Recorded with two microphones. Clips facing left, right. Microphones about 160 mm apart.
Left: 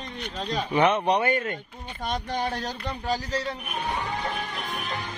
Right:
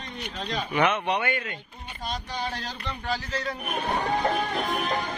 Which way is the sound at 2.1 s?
55° left (ahead or behind).